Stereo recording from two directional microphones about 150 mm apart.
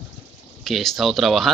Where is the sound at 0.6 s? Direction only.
Centre (ahead or behind).